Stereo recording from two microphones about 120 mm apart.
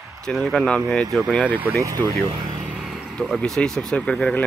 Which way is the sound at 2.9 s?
Centre (ahead or behind).